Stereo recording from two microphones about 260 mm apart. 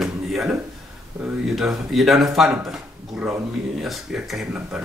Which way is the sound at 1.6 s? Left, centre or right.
Centre.